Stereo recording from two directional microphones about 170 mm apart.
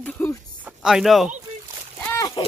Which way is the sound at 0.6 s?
5° right (ahead or behind).